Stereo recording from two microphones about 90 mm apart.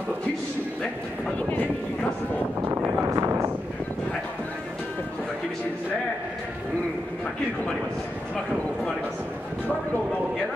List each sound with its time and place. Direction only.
2.6 s speech: 25° right (ahead or behind)